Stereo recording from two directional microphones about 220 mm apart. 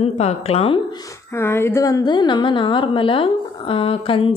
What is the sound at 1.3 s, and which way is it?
A woman's voice, 10° left (ahead or behind).